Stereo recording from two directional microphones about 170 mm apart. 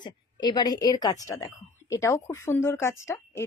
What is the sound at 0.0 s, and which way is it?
A woman's voice, 25° left (ahead or behind).